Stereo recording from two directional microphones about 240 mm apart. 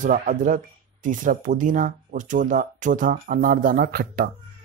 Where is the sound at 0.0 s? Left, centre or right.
Right.